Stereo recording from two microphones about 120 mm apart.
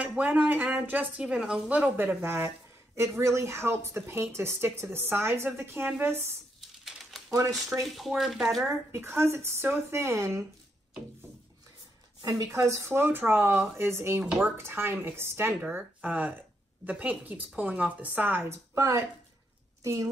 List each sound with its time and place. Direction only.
0.0 s a woman's voice: 10° right (ahead or behind)
6.8 s typewriter: centre (ahead or behind)
7.2 s a woman's voice: 30° right (ahead or behind)
7.8 s speech: centre (ahead or behind)
8.6 s a woman's voice: 20° right (ahead or behind)
12.2 s a woman's voice: 30° right (ahead or behind)